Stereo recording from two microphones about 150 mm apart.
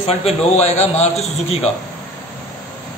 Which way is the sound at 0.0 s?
45° left (ahead or behind).